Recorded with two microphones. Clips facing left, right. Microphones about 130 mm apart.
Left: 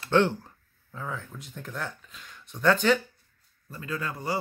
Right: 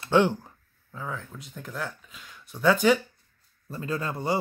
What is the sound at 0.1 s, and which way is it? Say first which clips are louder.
Speech: right 1 dB; 15° right (ahead or behind).